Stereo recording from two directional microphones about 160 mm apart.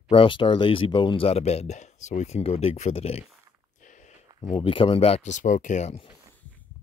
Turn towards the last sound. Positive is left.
turn(degrees=50)  # may be behind; listen again after turning